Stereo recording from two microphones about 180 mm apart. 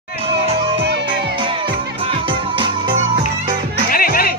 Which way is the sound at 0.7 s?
70° right (ahead or behind).